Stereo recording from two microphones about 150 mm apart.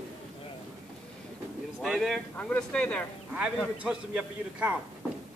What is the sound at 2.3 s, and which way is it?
Speech, 10° left (ahead or behind).